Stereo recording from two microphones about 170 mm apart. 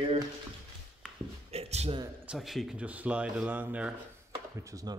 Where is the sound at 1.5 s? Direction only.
35° right (ahead or behind).